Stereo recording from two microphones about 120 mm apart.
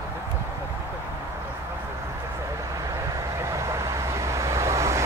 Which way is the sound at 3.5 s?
25° right (ahead or behind).